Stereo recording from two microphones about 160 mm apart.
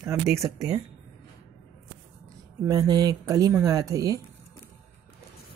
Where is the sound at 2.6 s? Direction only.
25° right (ahead or behind).